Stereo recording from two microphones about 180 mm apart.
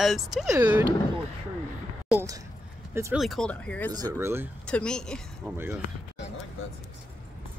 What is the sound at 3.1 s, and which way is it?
Speech, centre (ahead or behind).